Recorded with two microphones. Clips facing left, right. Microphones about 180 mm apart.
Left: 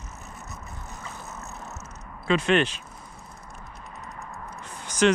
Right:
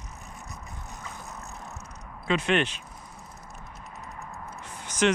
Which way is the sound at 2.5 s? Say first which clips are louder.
Left 3 dB; 35° left (ahead or behind).